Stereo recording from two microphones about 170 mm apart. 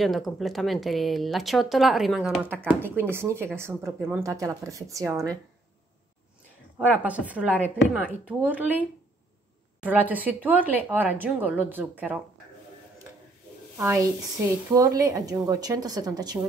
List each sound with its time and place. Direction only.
0.0 s speech: centre (ahead or behind)
2.8 s speech: 15° right (ahead or behind)
6.8 s speech: 10° right (ahead or behind)
9.8 s speech: 10° right (ahead or behind)
13.7 s a woman's voice: 15° right (ahead or behind)